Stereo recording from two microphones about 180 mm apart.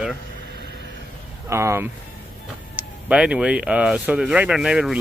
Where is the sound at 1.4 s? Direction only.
15° right (ahead or behind).